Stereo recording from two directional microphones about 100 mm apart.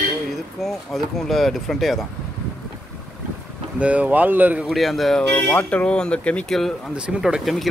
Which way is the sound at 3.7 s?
10° right (ahead or behind).